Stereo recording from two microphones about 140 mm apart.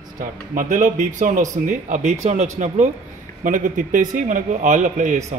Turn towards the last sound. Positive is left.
turn(degrees=-60)  # may be behind; listen again after turning